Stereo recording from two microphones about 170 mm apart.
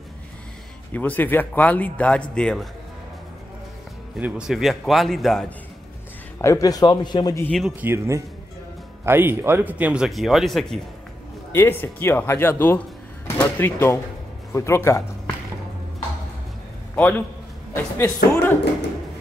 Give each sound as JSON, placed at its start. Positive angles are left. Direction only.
{"t": 0.9, "sound": "a man's voice", "side_deg": 10}
{"t": 4.2, "sound": "a man's voice", "side_deg": -5}
{"t": 6.3, "sound": "a man's voice", "side_deg": 20}
{"t": 7.4, "sound": "a man's voice", "side_deg": 0}
{"t": 7.8, "sound": "speech", "side_deg": -15}
{"t": 11.5, "sound": "speech", "side_deg": 10}
{"t": 16.9, "sound": "a man's voice", "side_deg": 10}